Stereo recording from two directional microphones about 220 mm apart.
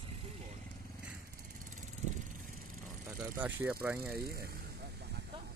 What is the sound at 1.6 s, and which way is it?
Vehicle, 35° right (ahead or behind).